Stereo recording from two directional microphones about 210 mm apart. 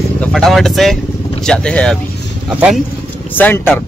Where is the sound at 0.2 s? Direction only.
Centre (ahead or behind).